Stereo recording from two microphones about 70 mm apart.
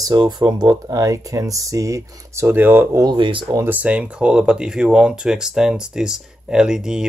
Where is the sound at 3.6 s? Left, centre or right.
Centre.